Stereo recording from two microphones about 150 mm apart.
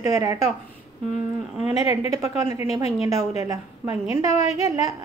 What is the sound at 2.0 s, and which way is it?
A woman's voice, 20° right (ahead or behind).